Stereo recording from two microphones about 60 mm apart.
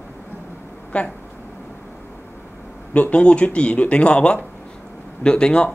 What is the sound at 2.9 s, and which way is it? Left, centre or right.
Speech, left.